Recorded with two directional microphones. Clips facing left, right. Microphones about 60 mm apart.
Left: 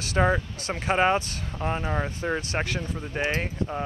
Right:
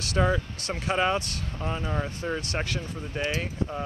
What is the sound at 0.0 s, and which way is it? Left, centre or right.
Speech, left.